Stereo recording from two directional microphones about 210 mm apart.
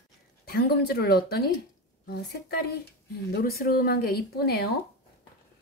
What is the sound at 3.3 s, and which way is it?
Speech, 45° left (ahead or behind).